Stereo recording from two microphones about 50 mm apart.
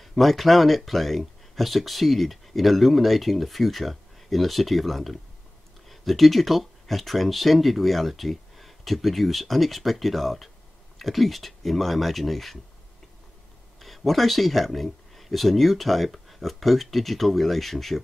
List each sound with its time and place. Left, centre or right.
0.0 s speech: centre
13.7 s speech: centre